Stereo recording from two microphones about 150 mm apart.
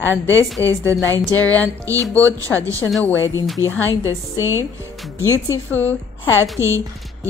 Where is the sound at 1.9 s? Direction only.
20° right (ahead or behind).